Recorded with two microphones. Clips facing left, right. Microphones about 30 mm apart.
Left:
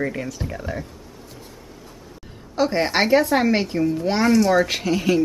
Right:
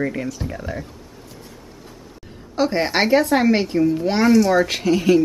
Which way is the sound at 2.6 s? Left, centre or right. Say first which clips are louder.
Right 1 dB; centre.